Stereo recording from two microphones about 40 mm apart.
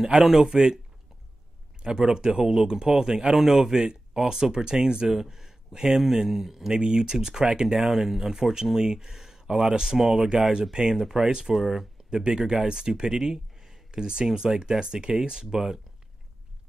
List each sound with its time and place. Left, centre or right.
0.0 s speech: centre
1.8 s speech: centre
6.7 s speech: centre
12.1 s speech: centre